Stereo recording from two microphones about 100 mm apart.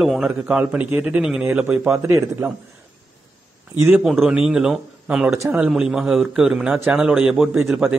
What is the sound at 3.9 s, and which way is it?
A man's voice, 5° right (ahead or behind).